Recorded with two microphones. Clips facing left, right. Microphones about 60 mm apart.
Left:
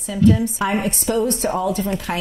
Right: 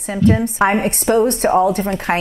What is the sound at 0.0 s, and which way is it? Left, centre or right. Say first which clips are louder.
A woman's voice: right 1 dB; right.